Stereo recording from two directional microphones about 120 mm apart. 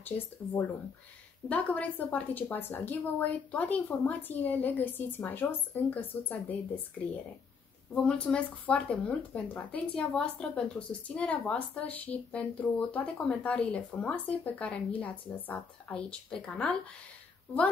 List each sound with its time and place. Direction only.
0.1 s speech: 15° left (ahead or behind)
1.5 s speech: 15° left (ahead or behind)
7.9 s speech: 10° left (ahead or behind)